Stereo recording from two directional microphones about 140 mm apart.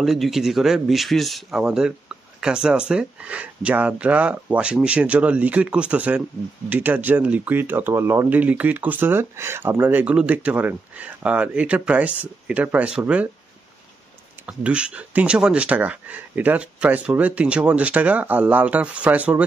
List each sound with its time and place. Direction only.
0.0 s speech: centre (ahead or behind)
14.4 s speech: 10° right (ahead or behind)